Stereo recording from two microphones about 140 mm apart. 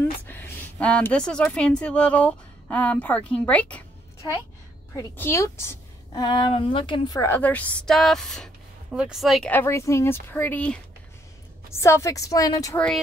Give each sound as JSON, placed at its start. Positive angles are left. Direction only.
{"t": 0.3, "sound": "a woman's voice", "side_deg": 15}
{"t": 5.1, "sound": "speech", "side_deg": 15}
{"t": 6.1, "sound": "speech", "side_deg": 30}
{"t": 7.2, "sound": "speech", "side_deg": 15}
{"t": 9.5, "sound": "a woman's voice", "side_deg": 15}
{"t": 12.7, "sound": "speech", "side_deg": 5}